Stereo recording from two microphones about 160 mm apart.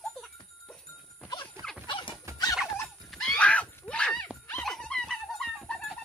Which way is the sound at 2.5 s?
Centre (ahead or behind).